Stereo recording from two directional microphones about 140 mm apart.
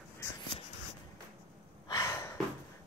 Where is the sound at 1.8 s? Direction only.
30° left (ahead or behind).